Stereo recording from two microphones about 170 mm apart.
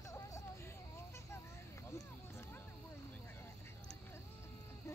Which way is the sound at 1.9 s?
15° left (ahead or behind).